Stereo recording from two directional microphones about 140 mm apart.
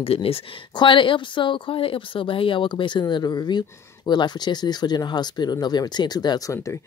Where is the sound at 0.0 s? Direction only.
45° left (ahead or behind).